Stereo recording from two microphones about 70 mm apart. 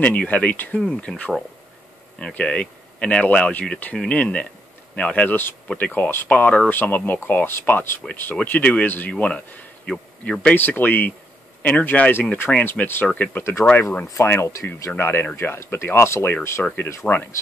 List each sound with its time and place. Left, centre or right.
0.0 s speech: left
10.5 s speech: left
13.4 s speech: left